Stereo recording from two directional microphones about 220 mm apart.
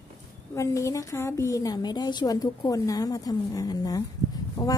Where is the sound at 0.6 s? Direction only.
15° left (ahead or behind).